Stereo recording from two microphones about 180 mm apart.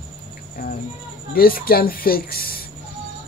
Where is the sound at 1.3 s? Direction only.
55° left (ahead or behind).